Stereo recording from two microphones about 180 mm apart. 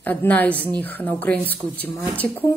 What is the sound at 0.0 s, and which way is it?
Speech, 10° left (ahead or behind).